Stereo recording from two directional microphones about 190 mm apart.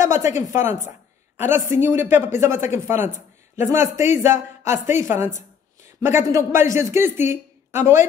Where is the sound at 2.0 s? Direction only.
40° left (ahead or behind).